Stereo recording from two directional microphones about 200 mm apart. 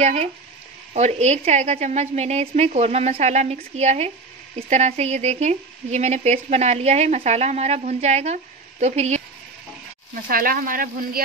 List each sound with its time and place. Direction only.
0.0 s speech: 30° right (ahead or behind)
10.2 s speech: 45° right (ahead or behind)